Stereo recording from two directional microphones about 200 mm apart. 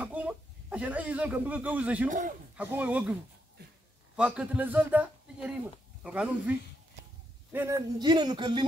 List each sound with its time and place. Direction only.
0.0 s speech: 5° right (ahead or behind)
2.0 s a man's voice: 40° right (ahead or behind)
2.5 s speech: 5° right (ahead or behind)
4.2 s speech: 5° right (ahead or behind)
7.5 s speech: 15° right (ahead or behind)